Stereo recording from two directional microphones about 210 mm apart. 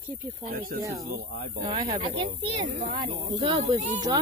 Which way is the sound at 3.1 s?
25° right (ahead or behind).